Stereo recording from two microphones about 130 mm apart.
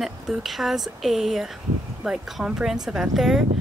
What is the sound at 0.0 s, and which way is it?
Speech, centre (ahead or behind).